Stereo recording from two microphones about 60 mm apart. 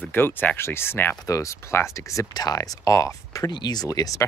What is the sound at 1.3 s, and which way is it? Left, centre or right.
Speech, left.